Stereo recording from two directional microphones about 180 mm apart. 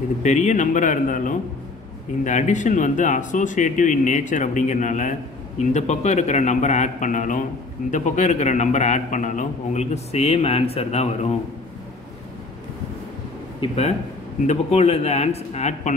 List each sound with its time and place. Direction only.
0.2 s a man's voice: 40° left (ahead or behind)
13.6 s a man's voice: 35° left (ahead or behind)